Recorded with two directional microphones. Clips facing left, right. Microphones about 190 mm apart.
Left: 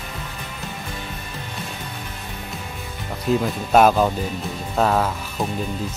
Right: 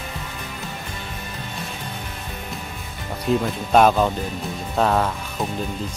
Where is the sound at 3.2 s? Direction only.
5° left (ahead or behind).